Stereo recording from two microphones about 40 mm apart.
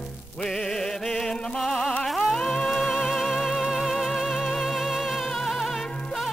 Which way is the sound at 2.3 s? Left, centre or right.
Centre.